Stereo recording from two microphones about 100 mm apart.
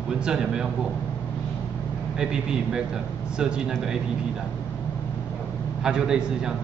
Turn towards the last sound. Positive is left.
turn(degrees=-5)  # may be behind; listen again after turning